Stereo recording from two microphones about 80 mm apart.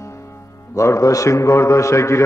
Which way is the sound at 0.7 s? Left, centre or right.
Left.